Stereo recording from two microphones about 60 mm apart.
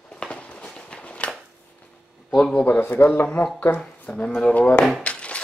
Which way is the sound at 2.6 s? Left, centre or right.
Left.